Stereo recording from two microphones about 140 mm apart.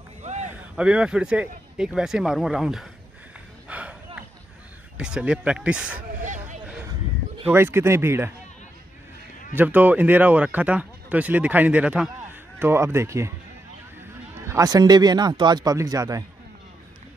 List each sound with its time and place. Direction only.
0.2 s a sound: 55° right (ahead or behind)
0.7 s speech: 10° right (ahead or behind)
3.6 s a sound: 10° right (ahead or behind)
4.9 s speech: 10° right (ahead or behind)
6.2 s vehicle: 60° right (ahead or behind)
6.6 s a sound: 10° right (ahead or behind)
7.4 s speech: 15° right (ahead or behind)
9.6 s speech: 10° right (ahead or behind)
12.5 s a man's voice: 20° right (ahead or behind)
14.3 s a man's voice: 25° right (ahead or behind)